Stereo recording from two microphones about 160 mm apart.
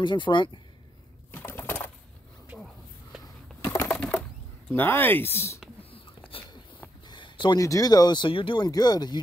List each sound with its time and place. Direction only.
0.0 s speech: 30° left (ahead or behind)
1.3 s bird: 10° left (ahead or behind)
2.5 s a sound: 5° right (ahead or behind)
3.6 s bird: 15° left (ahead or behind)
4.6 s speech: 10° left (ahead or behind)
5.8 s a sound: 35° left (ahead or behind)
7.1 s speech: 30° left (ahead or behind)